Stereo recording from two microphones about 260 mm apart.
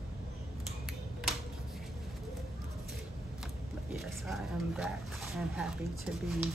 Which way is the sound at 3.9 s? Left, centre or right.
Centre.